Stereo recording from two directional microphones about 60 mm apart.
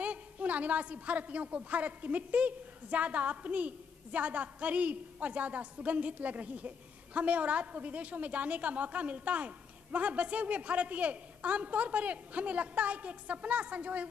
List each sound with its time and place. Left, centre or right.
0.0 s a woman's voice: right